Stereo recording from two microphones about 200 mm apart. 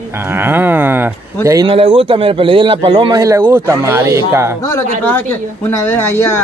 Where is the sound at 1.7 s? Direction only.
25° right (ahead or behind).